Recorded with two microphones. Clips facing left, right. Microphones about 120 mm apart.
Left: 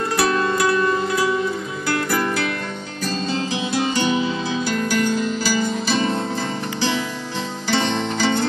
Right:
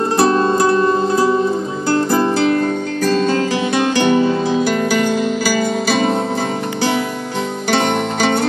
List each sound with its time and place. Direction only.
0.0 s music: 25° right (ahead or behind)
3.1 s music: 55° right (ahead or behind)
7.7 s music: 60° right (ahead or behind)